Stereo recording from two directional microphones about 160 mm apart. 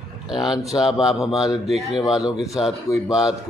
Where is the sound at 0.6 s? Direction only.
5° right (ahead or behind).